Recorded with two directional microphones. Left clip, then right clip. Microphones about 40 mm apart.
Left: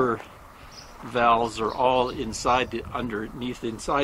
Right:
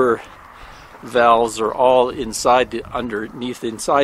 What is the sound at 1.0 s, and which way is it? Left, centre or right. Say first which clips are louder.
Speech: right 7 dB; right.